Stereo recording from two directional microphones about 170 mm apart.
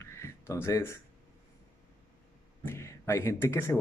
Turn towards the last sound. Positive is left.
turn(degrees=15)  # may be behind; listen again after turning